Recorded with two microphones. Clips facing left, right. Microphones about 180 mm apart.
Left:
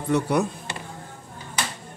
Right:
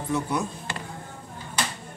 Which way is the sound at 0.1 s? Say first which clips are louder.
Left 5 dB; 70° left (ahead or behind).